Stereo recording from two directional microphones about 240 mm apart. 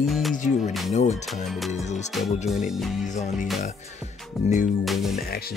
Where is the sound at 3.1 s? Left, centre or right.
Left.